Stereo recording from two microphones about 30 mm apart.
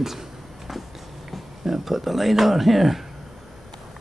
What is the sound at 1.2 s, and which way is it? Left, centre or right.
Speech, centre.